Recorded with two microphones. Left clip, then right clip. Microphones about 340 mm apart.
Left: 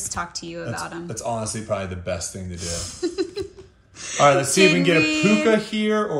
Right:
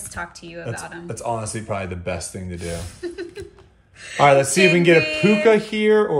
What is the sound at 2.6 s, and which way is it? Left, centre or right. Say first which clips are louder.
Speech: left 3 dB; centre.